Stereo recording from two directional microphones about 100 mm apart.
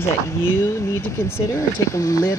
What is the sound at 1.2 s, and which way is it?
Speech, 25° left (ahead or behind).